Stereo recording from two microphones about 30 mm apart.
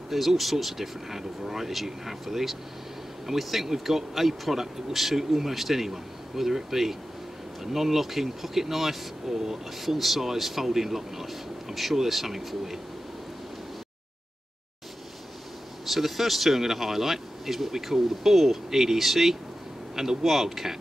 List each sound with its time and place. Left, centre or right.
0.1 s speech: centre
15.8 s speech: centre
20.0 s speech: centre
20.2 s speech: centre